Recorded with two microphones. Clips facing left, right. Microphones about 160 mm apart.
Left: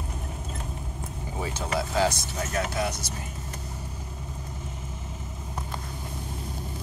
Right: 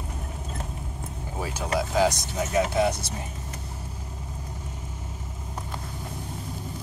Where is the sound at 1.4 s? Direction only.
10° right (ahead or behind).